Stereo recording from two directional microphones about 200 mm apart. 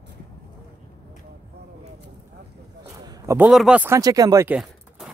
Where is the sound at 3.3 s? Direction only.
5° right (ahead or behind).